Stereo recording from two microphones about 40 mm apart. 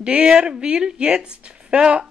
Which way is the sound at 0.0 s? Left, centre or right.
Right.